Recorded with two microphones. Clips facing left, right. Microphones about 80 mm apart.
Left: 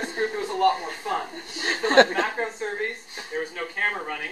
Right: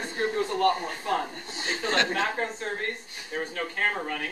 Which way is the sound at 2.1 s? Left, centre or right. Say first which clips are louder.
Left 2 dB; centre.